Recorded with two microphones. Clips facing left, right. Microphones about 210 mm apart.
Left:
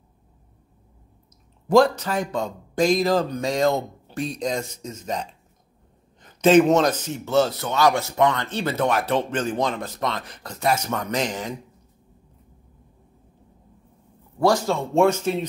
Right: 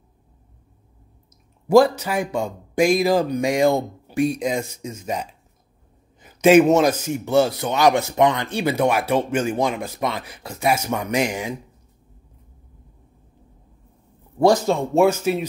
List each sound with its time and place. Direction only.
1.7 s a man's voice: 10° right (ahead or behind)
14.4 s a man's voice: 20° right (ahead or behind)
15.0 s a man's voice: 5° right (ahead or behind)